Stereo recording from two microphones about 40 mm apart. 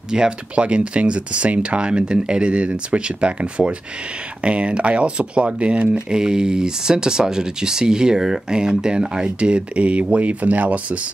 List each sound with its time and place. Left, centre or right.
0.1 s speech: right
6.0 s speech: centre; by 11.0 s right